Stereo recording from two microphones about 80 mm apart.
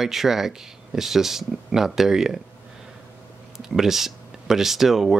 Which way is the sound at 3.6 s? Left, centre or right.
Centre.